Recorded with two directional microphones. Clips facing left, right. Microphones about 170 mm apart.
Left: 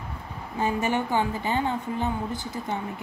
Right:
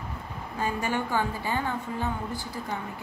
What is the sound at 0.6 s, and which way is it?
A woman's voice, 20° left (ahead or behind).